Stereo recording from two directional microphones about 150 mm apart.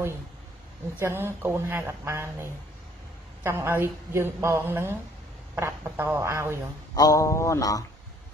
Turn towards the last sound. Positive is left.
turn(degrees=25)  # may be behind; listen again after turning